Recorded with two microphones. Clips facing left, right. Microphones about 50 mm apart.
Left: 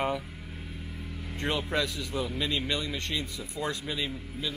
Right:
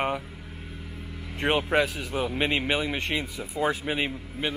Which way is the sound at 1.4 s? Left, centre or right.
Right.